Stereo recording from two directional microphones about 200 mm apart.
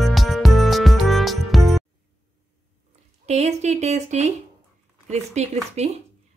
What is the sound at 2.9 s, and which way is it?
Speech, 35° right (ahead or behind).